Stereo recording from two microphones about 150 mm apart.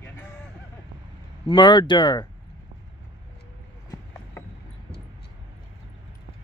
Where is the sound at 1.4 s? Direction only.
30° left (ahead or behind).